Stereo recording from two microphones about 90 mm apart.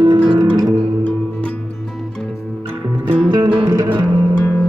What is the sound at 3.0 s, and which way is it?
Music, 60° right (ahead or behind).